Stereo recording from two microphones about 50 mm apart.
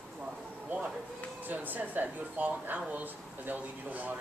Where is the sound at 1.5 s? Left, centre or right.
Right.